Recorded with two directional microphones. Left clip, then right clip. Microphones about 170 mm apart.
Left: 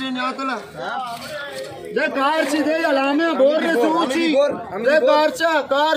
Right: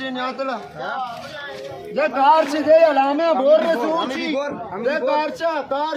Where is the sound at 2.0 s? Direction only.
55° right (ahead or behind).